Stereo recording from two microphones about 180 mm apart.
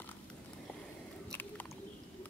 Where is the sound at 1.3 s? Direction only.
10° left (ahead or behind).